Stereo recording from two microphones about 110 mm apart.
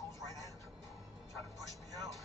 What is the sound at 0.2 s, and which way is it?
Music, 30° left (ahead or behind).